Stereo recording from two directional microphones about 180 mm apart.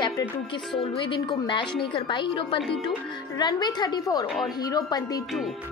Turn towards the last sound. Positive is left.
turn(degrees=20)  # may be behind; listen again after turning